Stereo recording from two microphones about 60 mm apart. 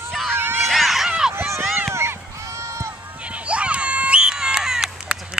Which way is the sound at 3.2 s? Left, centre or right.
Centre.